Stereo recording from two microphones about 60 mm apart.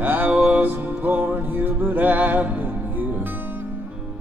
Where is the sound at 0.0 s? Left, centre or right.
Right.